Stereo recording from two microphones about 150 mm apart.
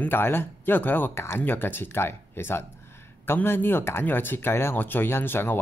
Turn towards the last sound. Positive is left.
turn(degrees=15)  # may be behind; listen again after turning